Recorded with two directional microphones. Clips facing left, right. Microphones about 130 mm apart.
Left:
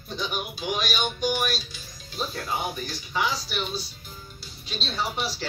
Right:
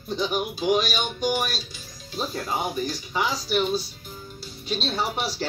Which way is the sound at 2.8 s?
45° right (ahead or behind).